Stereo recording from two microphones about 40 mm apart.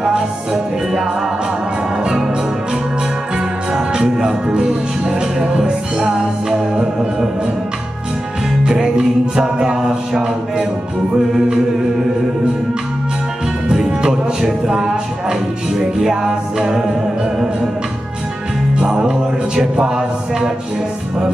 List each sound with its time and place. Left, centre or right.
0.0 s music: centre
2.0 s organ: centre
3.3 s music: centre
8.6 s music: centre
13.8 s music: right
18.8 s music: centre